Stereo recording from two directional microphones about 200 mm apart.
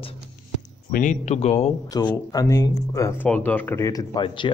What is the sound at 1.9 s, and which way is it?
Speech, 20° left (ahead or behind).